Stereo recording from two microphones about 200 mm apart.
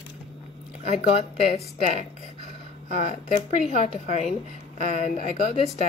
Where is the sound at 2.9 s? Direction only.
35° left (ahead or behind).